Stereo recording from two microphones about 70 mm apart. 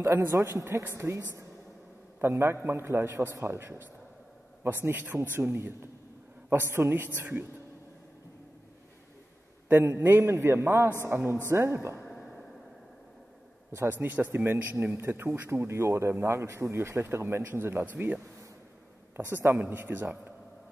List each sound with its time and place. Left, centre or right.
0.0 s speech: right
4.8 s speech: right
9.7 s speech: right
10.2 s speech: right
12.1 s a sound: centre
13.7 s speech: right
15.3 s speech: right
15.6 s speech: right